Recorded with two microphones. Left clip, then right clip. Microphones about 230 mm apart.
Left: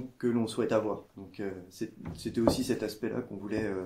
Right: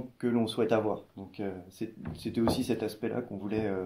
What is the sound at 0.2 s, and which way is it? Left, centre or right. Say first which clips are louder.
Speech: right 1 dB; right.